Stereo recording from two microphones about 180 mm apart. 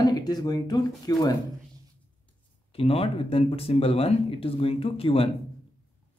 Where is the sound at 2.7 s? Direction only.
30° left (ahead or behind).